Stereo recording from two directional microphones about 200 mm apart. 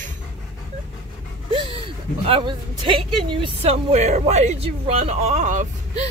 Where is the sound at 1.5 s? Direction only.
25° right (ahead or behind).